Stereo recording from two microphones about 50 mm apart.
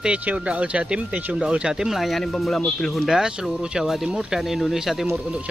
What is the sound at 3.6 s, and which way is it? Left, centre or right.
Speech, centre.